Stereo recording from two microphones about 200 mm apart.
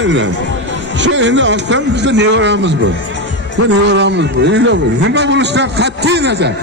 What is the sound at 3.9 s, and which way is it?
A man's voice, 60° right (ahead or behind).